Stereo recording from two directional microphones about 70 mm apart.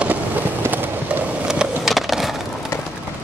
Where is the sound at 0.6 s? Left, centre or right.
Right.